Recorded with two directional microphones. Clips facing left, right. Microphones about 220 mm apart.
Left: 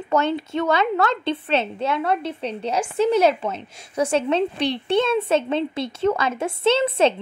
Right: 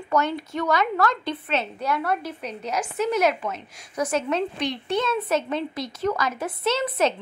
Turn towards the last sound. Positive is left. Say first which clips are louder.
# left 5 dB
turn(degrees=25)  # may be behind; listen again after turning